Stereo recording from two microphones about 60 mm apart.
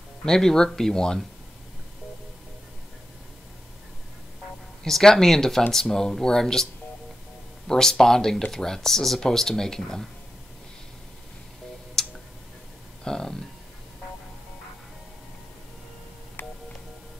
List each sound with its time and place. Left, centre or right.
0.2 s speech: centre
4.8 s speech: centre
12.0 s tick-tock: centre
13.0 s speech: centre
16.4 s music: left